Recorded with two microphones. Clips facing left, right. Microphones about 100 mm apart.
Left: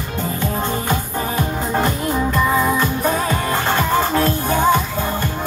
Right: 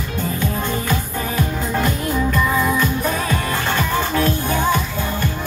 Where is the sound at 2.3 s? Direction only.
25° left (ahead or behind).